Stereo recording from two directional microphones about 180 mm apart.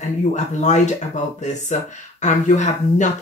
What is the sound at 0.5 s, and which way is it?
Speech, 40° left (ahead or behind).